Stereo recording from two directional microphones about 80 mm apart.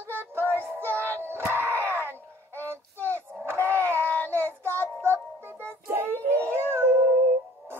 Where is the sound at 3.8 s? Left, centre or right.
Right.